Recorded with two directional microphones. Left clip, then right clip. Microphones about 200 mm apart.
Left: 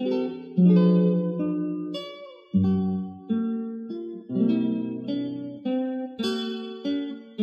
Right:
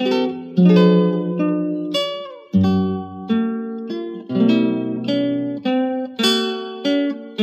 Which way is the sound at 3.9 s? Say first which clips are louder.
Right 8 dB; 5° right (ahead or behind).